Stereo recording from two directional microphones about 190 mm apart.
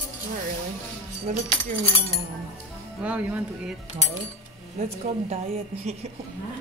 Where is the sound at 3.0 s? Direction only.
5° right (ahead or behind).